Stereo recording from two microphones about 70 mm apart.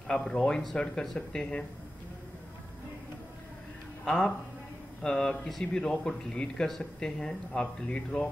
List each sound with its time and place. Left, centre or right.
0.1 s speech: centre
4.0 s a man's voice: centre